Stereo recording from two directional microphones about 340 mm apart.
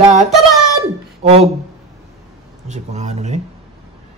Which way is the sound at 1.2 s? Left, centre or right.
Centre.